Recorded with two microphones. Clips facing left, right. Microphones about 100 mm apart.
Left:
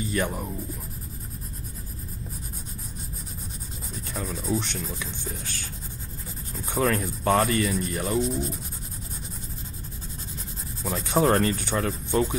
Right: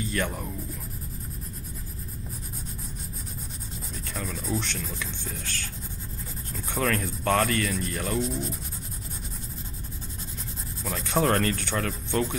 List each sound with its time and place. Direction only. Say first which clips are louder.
0.1 s rub: left 2 dB; 10° left (ahead or behind)
3.9 s speech: left 2 dB; 5° left (ahead or behind)
6.5 s rub: left 3 dB; 5° left (ahead or behind)
10.8 s rub: left 3 dB; 5° left (ahead or behind)